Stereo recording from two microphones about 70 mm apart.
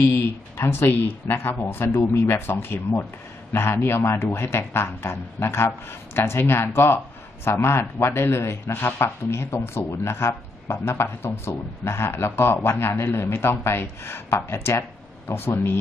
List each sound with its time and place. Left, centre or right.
0.0 s speech: left